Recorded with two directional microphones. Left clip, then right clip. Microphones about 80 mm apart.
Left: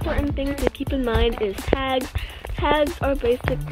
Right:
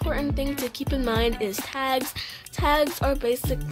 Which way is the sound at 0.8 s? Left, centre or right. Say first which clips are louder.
Right 1 dB; right.